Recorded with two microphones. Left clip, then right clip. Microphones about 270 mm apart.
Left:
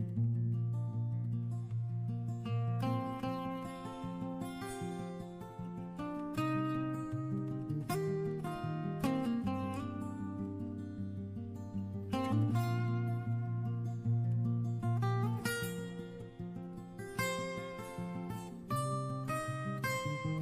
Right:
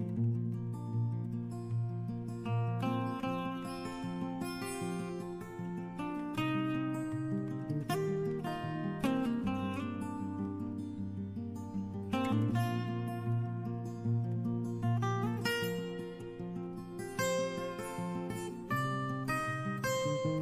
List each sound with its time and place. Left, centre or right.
2.8 s music: left
6.3 s music: left
12.1 s music: left
14.9 s music: left
17.2 s music: left
18.7 s music: centre